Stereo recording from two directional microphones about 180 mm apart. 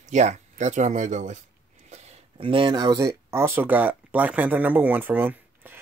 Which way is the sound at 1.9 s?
30° right (ahead or behind).